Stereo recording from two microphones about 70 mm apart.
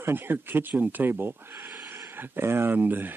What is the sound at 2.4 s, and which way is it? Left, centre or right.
Speech, right.